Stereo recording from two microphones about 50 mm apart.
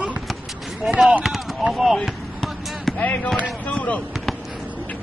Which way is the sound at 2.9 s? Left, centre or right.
Left.